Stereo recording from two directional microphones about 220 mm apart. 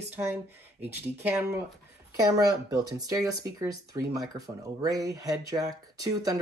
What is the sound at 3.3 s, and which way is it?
Speech, 15° right (ahead or behind).